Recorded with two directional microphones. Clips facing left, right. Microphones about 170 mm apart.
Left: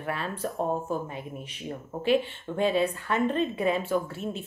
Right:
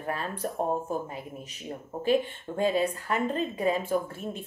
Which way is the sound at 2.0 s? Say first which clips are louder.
Left 1 dB; 40° right (ahead or behind).